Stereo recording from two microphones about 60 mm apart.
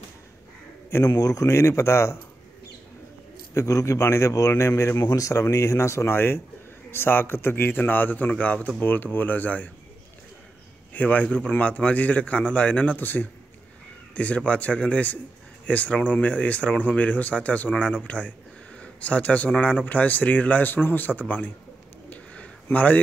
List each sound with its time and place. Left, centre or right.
0.9 s a man's voice: left
3.5 s a man's voice: left
8.3 s speech: left
8.9 s a man's voice: left
10.9 s speech: left
22.1 s a sound: left